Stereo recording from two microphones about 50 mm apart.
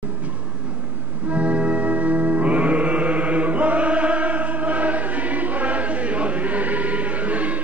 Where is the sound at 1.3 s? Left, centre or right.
Right.